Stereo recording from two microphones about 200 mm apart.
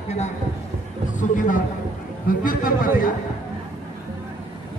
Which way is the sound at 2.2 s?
45° left (ahead or behind).